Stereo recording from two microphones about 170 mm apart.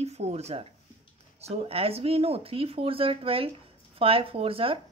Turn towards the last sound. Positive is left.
turn(degrees=-35)  # may be behind; listen again after turning